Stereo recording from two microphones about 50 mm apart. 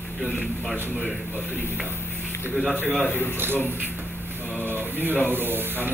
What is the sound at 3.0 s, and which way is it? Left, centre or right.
Speech, left.